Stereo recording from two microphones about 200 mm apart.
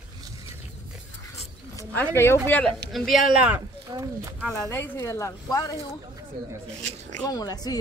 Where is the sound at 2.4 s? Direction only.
10° left (ahead or behind).